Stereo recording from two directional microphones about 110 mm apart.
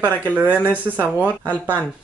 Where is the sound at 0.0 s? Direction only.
15° right (ahead or behind).